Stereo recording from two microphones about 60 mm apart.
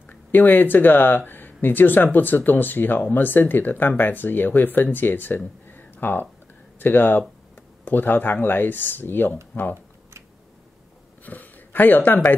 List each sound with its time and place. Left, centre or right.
0.0 s speech: left
5.7 s a sound: left
6.8 s speech: left
11.2 s speech: left